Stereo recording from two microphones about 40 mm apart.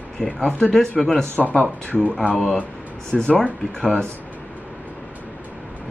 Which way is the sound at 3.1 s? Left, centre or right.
Left.